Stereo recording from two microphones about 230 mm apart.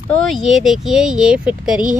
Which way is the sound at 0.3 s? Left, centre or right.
Centre.